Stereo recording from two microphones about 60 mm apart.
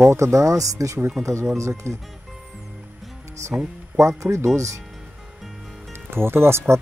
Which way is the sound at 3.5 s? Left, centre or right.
Right.